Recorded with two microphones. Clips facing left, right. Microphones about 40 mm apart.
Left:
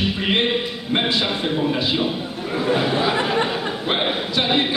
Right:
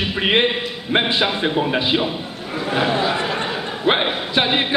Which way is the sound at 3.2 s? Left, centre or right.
Centre.